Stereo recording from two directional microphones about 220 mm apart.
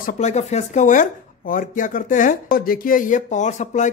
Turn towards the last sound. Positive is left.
turn(degrees=35)  # may be behind; listen again after turning